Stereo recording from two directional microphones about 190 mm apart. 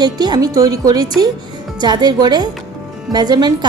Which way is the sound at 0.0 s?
20° right (ahead or behind).